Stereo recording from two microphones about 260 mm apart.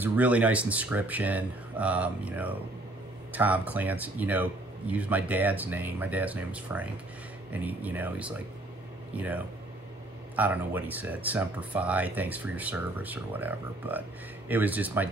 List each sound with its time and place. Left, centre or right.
0.0 s speech: centre